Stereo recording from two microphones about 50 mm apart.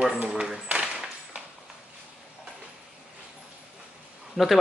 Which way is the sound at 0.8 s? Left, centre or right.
Centre.